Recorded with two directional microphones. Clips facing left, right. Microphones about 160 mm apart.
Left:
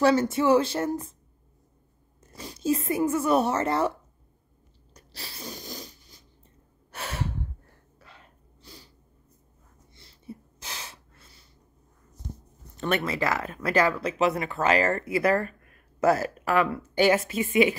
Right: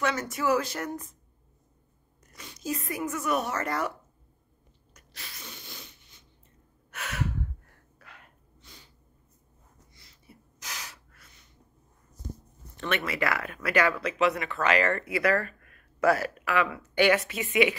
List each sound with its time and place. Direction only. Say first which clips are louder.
0.0 s a woman's voice: left 7 dB; 30° left (ahead or behind)
2.2 s a woman's voice: left 8 dB; 30° left (ahead or behind)
4.9 s sneeze: left 5 dB; 30° left (ahead or behind)
6.9 s gasp: left 1 dB; 30° left (ahead or behind)
9.9 s gasp: left 15 dB; 25° left (ahead or behind)
12.8 s speech: left 3 dB; 35° left (ahead or behind)